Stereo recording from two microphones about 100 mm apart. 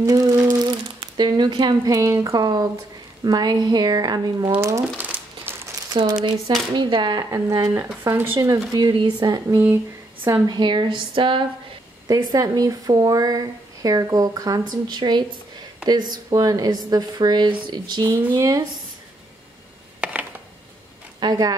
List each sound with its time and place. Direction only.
0.0 s humming: 35° right (ahead or behind)
0.5 s speech: 45° right (ahead or behind)
4.9 s crumpling: 15° right (ahead or behind)
5.9 s speech: 50° right (ahead or behind)
7.2 s speech: 30° right (ahead or behind)
8.4 s speech: 45° right (ahead or behind)
12.1 s speech: 40° right (ahead or behind)
18.3 s speech: 40° right (ahead or behind)
20.0 s a sound: 15° right (ahead or behind)
21.2 s speech: 40° right (ahead or behind)